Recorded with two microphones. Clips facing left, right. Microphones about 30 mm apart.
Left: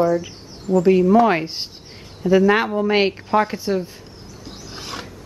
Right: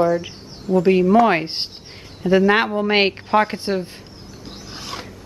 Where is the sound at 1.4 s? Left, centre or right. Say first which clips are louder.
Right 2 dB; right.